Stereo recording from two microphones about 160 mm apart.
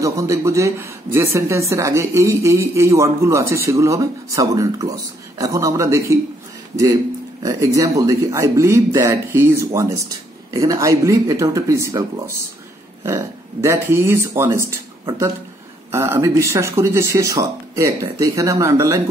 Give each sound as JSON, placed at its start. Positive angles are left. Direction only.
{"t": 0.0, "sound": "speech", "side_deg": -20}
{"t": 7.4, "sound": "speech", "side_deg": -20}
{"t": 15.9, "sound": "speech", "side_deg": -15}